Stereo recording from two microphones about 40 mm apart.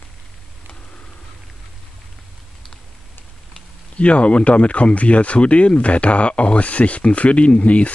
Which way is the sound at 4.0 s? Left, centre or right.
Left.